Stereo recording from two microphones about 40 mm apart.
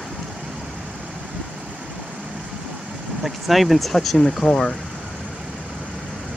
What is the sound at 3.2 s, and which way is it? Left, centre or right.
Speech, centre.